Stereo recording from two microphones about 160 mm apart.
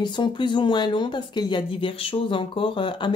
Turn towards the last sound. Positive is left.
turn(degrees=30)  # may be behind; listen again after turning